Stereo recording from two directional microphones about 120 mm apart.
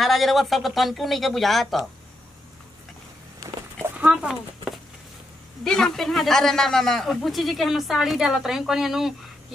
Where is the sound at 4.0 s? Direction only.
5° right (ahead or behind).